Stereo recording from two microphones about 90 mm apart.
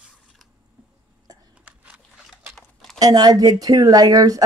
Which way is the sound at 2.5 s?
5° left (ahead or behind).